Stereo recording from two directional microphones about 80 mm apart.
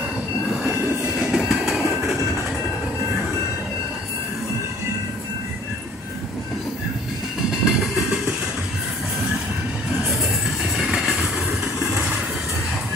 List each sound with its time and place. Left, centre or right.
1.2 s train: centre
7.6 s train: centre
10.8 s vehicle: centre